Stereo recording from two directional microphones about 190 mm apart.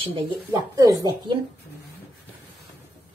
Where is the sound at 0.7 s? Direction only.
15° right (ahead or behind).